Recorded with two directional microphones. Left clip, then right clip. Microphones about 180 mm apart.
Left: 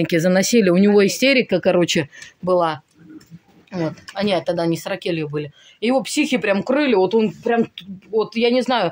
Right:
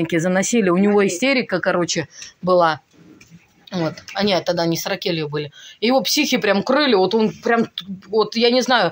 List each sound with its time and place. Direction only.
0.0 s speech: 35° left (ahead or behind)
2.4 s speech: 10° left (ahead or behind)